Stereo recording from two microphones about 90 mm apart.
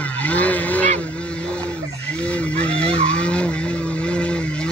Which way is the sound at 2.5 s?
10° left (ahead or behind).